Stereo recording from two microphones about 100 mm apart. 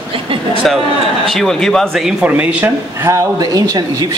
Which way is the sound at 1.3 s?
5° left (ahead or behind).